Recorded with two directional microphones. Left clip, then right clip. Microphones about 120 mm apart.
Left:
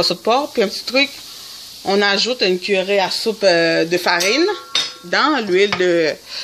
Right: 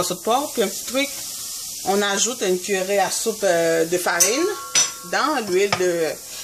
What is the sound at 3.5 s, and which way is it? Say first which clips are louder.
Speech: left 4 dB; 65° left (ahead or behind).